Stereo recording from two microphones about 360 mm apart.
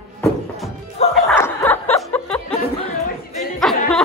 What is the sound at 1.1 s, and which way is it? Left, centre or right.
Music, centre.